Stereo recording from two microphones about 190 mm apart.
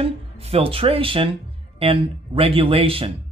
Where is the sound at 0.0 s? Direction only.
30° right (ahead or behind).